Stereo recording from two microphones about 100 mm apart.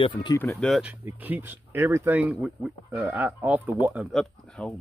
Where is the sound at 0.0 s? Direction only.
55° left (ahead or behind).